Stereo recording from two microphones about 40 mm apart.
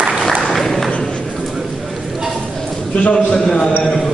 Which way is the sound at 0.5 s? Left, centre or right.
Centre.